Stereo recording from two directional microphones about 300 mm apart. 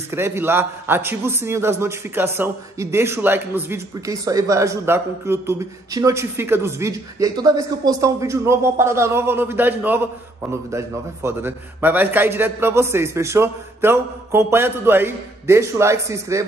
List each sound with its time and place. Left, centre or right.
0.1 s a man's voice: centre